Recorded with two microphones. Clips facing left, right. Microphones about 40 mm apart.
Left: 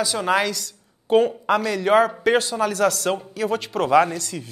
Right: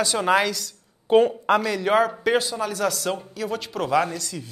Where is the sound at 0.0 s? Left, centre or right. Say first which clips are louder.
Even; centre.